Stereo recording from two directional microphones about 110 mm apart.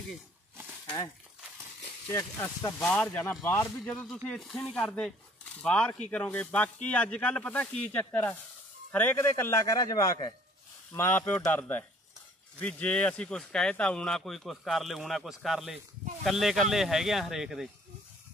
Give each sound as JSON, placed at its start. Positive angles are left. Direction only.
{"t": 0.8, "sound": "speech", "side_deg": 45}
{"t": 2.0, "sound": "speech", "side_deg": 25}
{"t": 10.9, "sound": "speech", "side_deg": 20}